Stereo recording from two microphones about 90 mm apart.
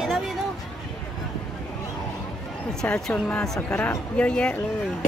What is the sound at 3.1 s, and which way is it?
Speech, 15° left (ahead or behind).